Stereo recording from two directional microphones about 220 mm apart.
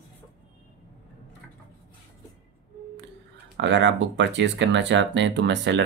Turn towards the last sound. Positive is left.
turn(degrees=-50)  # may be behind; listen again after turning